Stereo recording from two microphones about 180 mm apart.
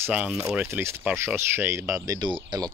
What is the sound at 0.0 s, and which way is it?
Speech, 5° right (ahead or behind).